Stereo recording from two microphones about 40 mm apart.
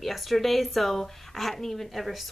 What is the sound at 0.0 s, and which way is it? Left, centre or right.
Speech, centre.